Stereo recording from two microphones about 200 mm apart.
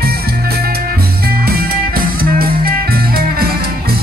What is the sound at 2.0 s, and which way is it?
Music, 50° right (ahead or behind).